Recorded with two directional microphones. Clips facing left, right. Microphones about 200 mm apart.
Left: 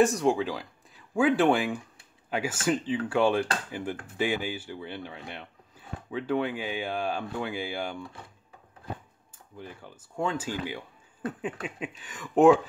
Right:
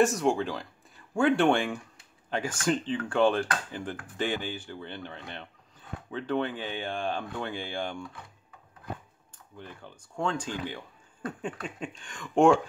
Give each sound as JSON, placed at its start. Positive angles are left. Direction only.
{"t": 0.0, "sound": "speech", "side_deg": 0}
{"t": 9.6, "sound": "speech", "side_deg": 5}